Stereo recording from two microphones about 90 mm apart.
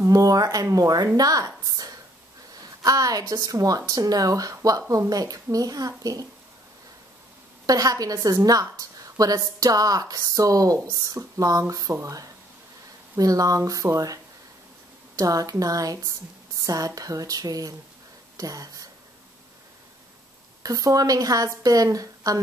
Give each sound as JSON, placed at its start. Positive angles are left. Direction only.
{"t": 0.0, "sound": "a woman's voice", "side_deg": -40}
{"t": 7.6, "sound": "a woman's voice", "side_deg": -45}
{"t": 20.6, "sound": "a woman's voice", "side_deg": -40}